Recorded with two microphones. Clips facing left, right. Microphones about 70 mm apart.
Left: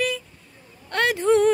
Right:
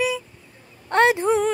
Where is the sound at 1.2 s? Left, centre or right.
Centre.